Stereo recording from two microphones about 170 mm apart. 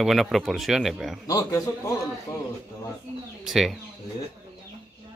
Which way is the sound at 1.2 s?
20° left (ahead or behind).